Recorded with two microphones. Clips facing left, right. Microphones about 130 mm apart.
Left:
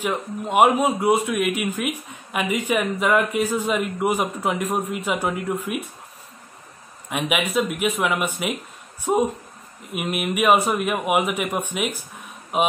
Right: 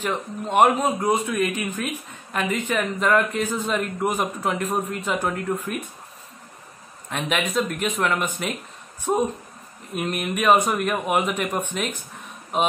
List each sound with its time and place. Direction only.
0.0 s speech: 10° left (ahead or behind)
7.1 s speech: 10° left (ahead or behind)